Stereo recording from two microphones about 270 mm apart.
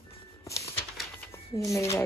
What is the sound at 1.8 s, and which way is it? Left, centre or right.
Speech, centre.